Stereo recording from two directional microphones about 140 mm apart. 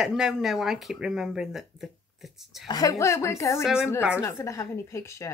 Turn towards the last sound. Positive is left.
turn(degrees=20)  # may be behind; listen again after turning